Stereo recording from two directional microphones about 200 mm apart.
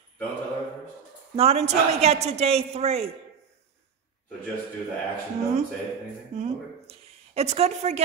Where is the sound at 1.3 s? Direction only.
30° right (ahead or behind).